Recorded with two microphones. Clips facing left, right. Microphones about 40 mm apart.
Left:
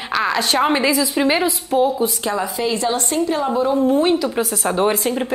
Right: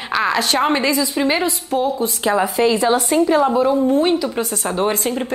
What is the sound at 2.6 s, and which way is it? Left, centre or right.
Speech, centre.